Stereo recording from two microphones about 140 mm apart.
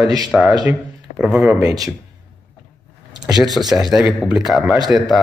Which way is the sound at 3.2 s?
Centre (ahead or behind).